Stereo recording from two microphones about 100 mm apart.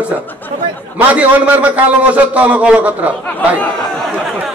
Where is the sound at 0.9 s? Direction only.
15° right (ahead or behind).